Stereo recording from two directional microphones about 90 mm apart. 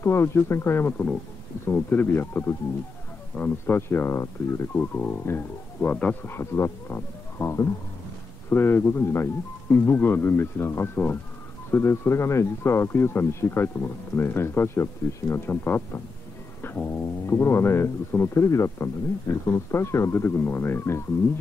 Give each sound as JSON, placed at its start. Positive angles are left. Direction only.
{"t": 0.0, "sound": "speech", "side_deg": 30}
{"t": 6.2, "sound": "speech", "side_deg": 25}